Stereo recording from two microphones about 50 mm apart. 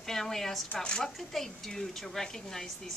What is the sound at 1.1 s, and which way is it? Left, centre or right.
A woman's voice, centre.